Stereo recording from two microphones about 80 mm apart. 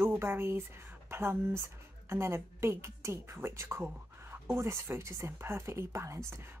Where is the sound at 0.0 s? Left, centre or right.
Right.